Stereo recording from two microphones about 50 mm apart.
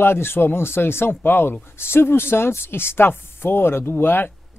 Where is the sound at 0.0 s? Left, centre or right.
Left.